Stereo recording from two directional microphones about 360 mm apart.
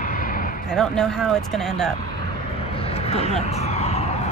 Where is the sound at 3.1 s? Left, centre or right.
Centre.